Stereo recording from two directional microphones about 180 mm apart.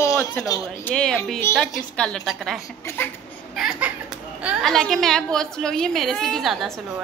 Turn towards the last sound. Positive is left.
turn(degrees=0)  # may be behind; listen again after turning